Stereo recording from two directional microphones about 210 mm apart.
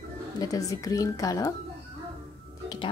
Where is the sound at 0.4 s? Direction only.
15° left (ahead or behind).